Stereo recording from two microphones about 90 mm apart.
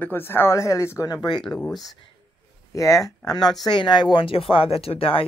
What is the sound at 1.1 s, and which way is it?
Speech, 45° left (ahead or behind).